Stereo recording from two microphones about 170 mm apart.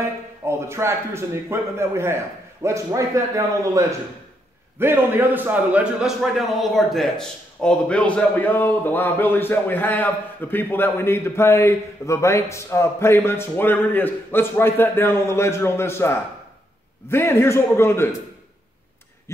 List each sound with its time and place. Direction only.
0.5 s a man's voice: 15° right (ahead or behind); by 18.1 s 15° left (ahead or behind)